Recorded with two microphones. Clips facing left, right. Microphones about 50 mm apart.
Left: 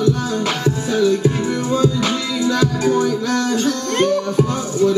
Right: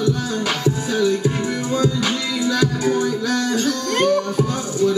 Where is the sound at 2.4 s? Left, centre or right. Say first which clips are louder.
Left 2 dB; left.